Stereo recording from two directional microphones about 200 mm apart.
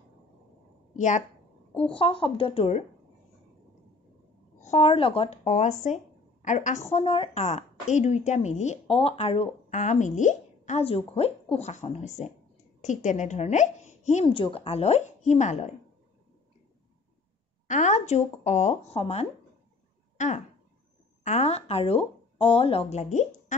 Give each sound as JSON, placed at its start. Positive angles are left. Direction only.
{"t": 0.9, "sound": "a woman's voice", "side_deg": 40}
{"t": 1.7, "sound": "a woman's voice", "side_deg": 5}
{"t": 2.0, "sound": "speech", "side_deg": 25}
{"t": 4.6, "sound": "a woman's voice", "side_deg": 35}
{"t": 17.6, "sound": "a woman's voice", "side_deg": 35}